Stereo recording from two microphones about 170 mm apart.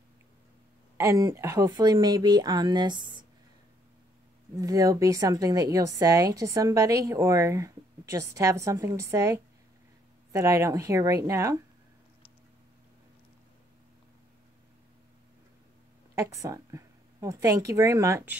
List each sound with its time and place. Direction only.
0.9 s a woman's voice: 20° right (ahead or behind)
4.6 s a woman's voice: 20° right (ahead or behind)
16.2 s speech: 20° right (ahead or behind)